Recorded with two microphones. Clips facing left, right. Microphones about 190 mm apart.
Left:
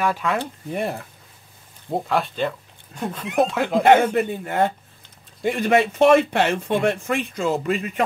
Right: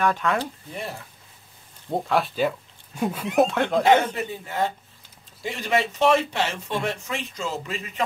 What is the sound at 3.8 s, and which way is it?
Speech, 55° left (ahead or behind).